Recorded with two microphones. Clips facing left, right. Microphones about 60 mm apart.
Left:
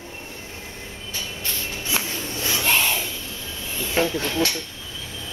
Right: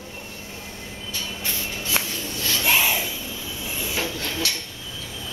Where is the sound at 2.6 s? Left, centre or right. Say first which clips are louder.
Right 1 dB; centre.